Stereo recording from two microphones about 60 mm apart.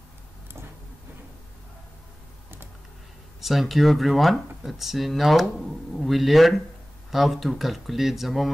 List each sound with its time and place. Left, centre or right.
3.3 s speech: centre